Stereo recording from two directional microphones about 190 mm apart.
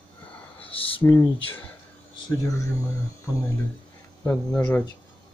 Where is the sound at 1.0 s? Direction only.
15° left (ahead or behind).